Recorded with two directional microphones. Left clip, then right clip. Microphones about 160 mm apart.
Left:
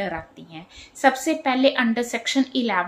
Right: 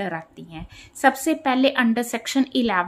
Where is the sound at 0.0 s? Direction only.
30° right (ahead or behind).